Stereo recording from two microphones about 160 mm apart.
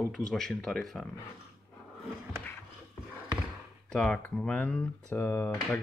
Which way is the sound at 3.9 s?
5° left (ahead or behind).